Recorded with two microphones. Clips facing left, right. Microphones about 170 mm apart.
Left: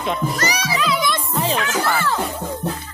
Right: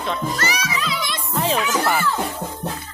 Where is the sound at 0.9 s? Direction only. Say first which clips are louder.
Left 6 dB; 50° left (ahead or behind).